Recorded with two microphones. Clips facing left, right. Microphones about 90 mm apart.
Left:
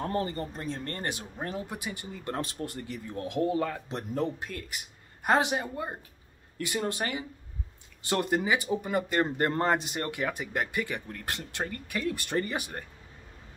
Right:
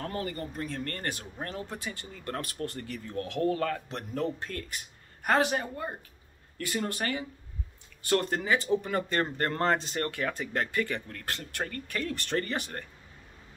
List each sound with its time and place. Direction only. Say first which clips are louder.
0.0 s speech: left 4 dB; 30° left (ahead or behind)